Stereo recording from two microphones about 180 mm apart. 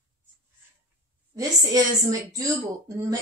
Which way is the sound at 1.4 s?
20° right (ahead or behind).